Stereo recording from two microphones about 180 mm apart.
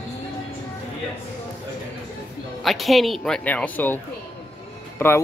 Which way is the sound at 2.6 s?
Centre (ahead or behind).